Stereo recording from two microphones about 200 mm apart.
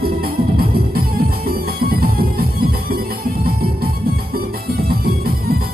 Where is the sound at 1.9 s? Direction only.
50° right (ahead or behind).